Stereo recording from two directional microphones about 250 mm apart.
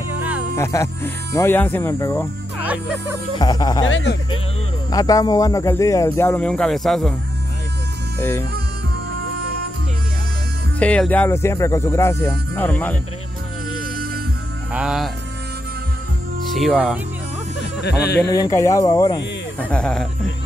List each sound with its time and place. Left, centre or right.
0.6 s speech: centre
3.3 s speech: centre
3.9 s speech: left
4.9 s speech: centre
8.2 s speech: centre
10.8 s speech: centre
14.7 s speech: centre
16.5 s speech: centre
17.8 s speech: left
18.3 s speech: centre
19.7 s speech: centre